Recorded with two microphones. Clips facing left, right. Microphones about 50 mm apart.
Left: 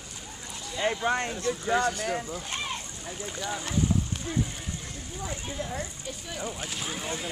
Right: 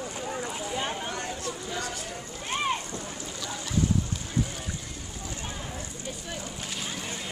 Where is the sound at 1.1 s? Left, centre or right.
Left.